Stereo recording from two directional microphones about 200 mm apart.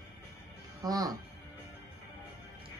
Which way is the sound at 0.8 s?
20° right (ahead or behind).